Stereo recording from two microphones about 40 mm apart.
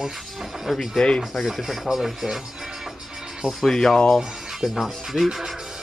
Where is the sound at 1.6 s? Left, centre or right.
Centre.